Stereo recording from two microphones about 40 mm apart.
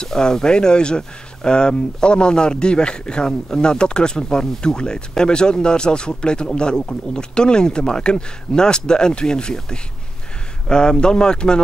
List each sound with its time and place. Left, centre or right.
0.0 s speech: centre